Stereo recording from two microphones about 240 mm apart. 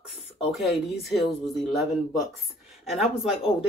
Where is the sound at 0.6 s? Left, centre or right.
Centre.